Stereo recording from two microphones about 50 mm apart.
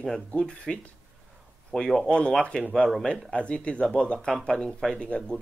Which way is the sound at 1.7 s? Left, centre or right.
Centre.